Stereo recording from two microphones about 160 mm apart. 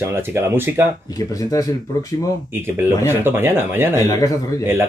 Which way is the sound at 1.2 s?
20° left (ahead or behind).